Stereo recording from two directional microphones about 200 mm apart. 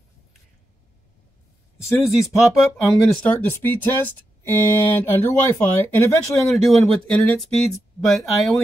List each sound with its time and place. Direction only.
2.3 s speech: centre (ahead or behind)
6.4 s speech: centre (ahead or behind)